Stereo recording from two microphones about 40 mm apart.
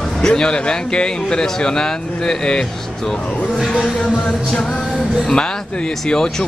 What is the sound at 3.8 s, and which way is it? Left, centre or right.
Music, centre.